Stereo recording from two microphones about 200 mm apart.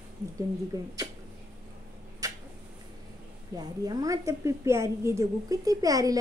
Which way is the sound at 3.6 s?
20° right (ahead or behind).